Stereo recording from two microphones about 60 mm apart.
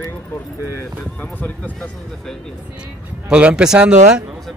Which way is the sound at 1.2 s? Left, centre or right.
Left.